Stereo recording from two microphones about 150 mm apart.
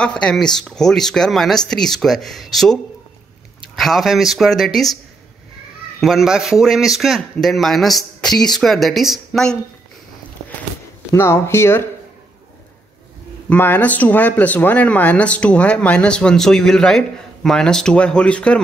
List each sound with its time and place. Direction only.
0.0 s a man's voice: 5° left (ahead or behind)
5.9 s a man's voice: centre (ahead or behind)
11.1 s speech: 15° left (ahead or behind)
13.5 s speech: 10° left (ahead or behind)